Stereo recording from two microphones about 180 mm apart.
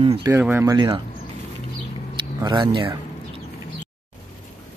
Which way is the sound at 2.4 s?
25° right (ahead or behind).